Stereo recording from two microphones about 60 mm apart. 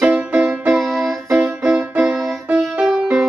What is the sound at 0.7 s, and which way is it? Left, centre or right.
Music, centre.